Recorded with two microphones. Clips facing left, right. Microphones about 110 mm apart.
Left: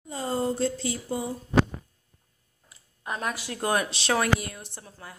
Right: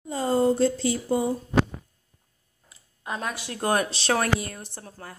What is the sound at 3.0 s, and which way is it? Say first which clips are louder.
A woman's voice: even; 25° right (ahead or behind).